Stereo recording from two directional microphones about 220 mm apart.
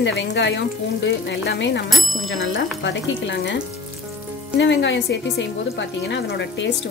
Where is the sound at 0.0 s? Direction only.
50° left (ahead or behind).